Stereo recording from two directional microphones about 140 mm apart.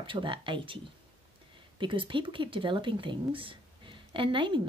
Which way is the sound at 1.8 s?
35° right (ahead or behind).